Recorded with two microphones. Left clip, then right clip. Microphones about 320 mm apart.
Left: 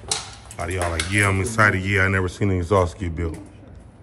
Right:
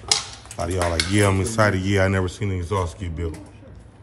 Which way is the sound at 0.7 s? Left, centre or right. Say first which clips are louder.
Right 1 dB; centre.